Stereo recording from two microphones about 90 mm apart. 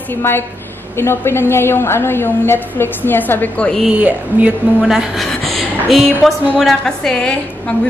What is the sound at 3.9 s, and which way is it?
Speech, 15° right (ahead or behind).